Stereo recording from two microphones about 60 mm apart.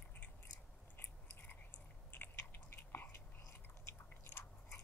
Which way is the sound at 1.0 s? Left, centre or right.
Left.